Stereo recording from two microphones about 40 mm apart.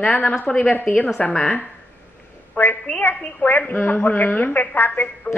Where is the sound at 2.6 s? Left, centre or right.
Left.